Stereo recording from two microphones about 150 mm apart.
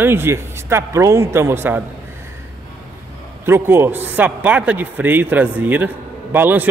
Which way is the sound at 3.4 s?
15° right (ahead or behind).